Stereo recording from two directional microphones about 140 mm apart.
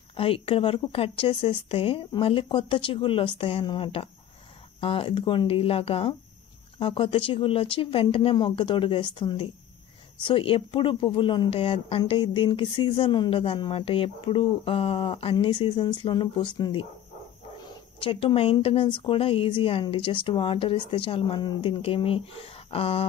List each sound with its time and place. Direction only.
0.1 s speech: 40° left (ahead or behind)
18.0 s speech: 40° left (ahead or behind)